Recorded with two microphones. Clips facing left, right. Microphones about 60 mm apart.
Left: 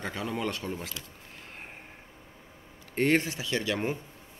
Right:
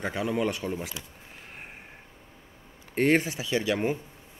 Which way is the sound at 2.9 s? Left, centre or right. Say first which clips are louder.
Right 2 dB; centre.